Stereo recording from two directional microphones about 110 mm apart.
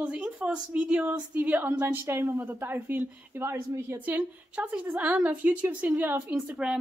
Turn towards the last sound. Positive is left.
turn(degrees=-10)  # may be behind; listen again after turning